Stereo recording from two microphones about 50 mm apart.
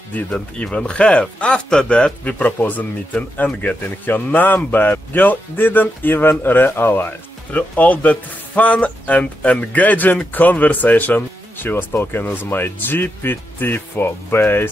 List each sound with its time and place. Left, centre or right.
0.3 s speech: left